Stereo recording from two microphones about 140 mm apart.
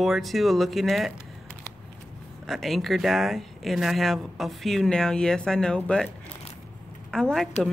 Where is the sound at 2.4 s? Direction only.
Centre (ahead or behind).